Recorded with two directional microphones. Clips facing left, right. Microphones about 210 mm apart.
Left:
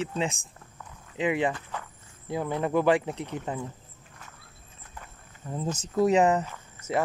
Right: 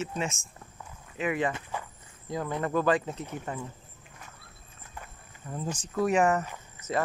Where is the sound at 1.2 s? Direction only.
15° left (ahead or behind).